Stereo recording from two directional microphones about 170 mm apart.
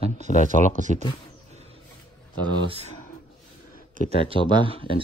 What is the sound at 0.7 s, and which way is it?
Speech, 45° right (ahead or behind).